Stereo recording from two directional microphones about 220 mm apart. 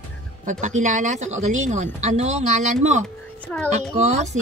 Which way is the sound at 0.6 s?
35° right (ahead or behind).